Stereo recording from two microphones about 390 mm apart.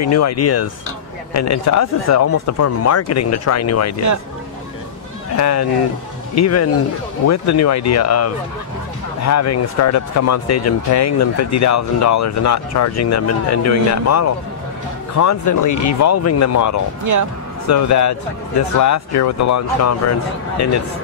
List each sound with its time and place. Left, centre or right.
0.0 s speech: left
5.3 s speech: left
17.0 s speech: right
17.6 s speech: left